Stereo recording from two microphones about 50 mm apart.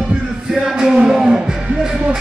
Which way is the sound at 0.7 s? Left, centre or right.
Centre.